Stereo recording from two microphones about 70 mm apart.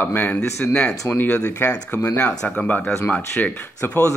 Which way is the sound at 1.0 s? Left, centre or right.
Left.